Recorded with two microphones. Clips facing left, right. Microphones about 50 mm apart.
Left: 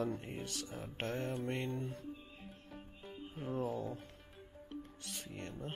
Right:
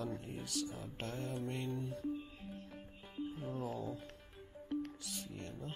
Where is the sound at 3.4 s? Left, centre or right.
Left.